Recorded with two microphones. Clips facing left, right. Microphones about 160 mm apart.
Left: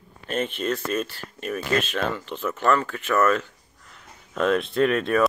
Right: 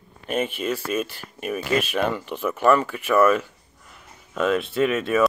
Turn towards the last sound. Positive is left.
turn(degrees=-5)  # may be behind; listen again after turning